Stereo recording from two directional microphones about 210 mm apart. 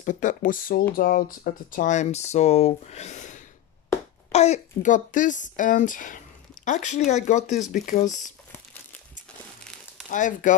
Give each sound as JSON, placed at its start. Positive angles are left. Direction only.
{"t": 0.0, "sound": "speech", "side_deg": 35}
{"t": 10.1, "sound": "speech", "side_deg": 35}